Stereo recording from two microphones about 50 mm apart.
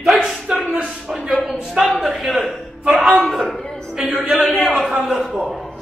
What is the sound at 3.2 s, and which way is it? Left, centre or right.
Speech, centre.